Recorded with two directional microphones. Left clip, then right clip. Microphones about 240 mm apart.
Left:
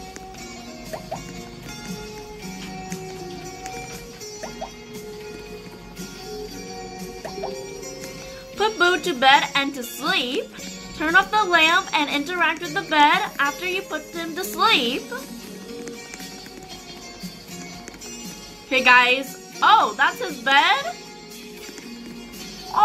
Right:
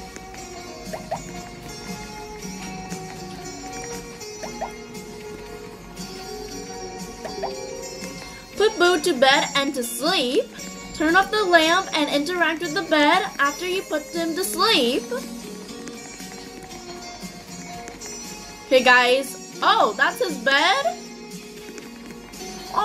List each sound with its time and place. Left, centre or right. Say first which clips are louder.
8.5 s a woman's voice: right 1 dB; centre
18.7 s a woman's voice: even; centre